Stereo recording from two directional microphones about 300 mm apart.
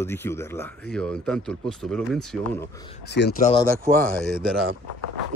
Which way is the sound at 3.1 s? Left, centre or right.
Left.